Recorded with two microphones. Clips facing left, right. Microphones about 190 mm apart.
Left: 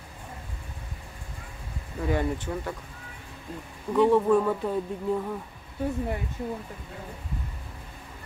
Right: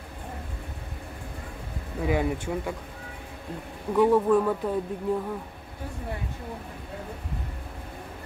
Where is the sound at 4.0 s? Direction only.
5° right (ahead or behind).